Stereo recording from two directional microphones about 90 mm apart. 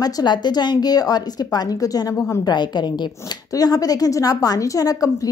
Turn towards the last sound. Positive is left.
turn(degrees=40)  # may be behind; listen again after turning